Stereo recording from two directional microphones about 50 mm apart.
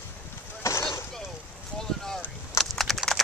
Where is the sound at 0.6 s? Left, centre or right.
Left.